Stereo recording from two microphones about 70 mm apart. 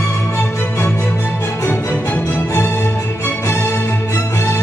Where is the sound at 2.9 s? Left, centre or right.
Left.